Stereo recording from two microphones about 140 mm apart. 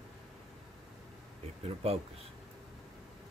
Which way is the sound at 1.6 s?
45° right (ahead or behind).